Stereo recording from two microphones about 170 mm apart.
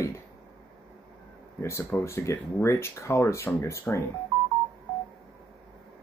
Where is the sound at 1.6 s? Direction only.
15° left (ahead or behind).